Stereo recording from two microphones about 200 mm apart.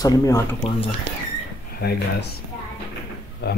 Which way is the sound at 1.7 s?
50° left (ahead or behind).